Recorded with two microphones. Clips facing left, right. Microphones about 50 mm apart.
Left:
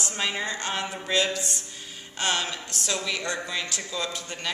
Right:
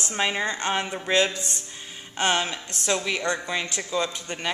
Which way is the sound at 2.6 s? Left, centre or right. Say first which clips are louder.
Right 4 dB; right.